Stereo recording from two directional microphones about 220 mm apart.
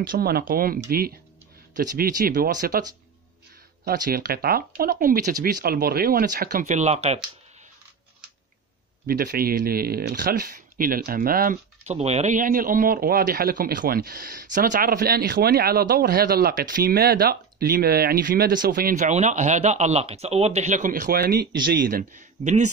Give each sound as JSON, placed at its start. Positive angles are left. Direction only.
{"t": 0.0, "sound": "speech", "side_deg": -40}
{"t": 3.8, "sound": "speech", "side_deg": -40}
{"t": 9.0, "sound": "speech", "side_deg": -40}